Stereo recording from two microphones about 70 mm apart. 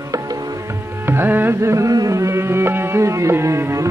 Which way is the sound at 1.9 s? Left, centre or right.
Right.